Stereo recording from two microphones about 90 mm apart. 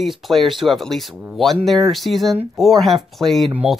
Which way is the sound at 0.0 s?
Centre (ahead or behind).